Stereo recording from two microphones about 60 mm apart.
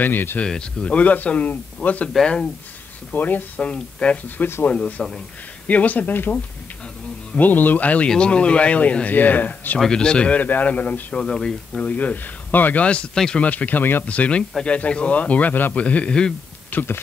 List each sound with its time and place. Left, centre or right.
0.0 s speech: left
0.4 s speech: centre
3.1 s speech: left
3.6 s speech: centre
4.4 s speech: left
4.6 s speech: left
9.8 s speech: centre
11.1 s speech: centre
11.8 s speech: left
12.8 s speech: centre
13.1 s speech: centre
13.4 s speech: left
16.7 s speech: left